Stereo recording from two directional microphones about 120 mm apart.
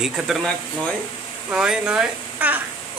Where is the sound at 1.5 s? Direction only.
5° right (ahead or behind).